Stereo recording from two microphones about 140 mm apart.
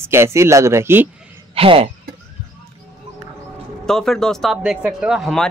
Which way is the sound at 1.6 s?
40° right (ahead or behind).